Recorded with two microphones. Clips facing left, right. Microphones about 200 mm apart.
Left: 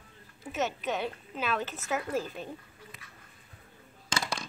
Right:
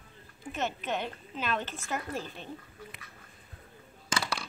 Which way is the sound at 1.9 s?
5° left (ahead or behind).